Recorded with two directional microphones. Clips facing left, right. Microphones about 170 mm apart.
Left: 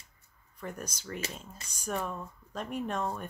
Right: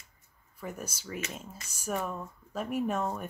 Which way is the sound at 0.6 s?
5° right (ahead or behind).